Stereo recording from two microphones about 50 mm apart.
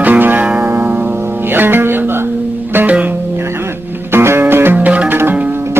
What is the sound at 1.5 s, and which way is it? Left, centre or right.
Music, right.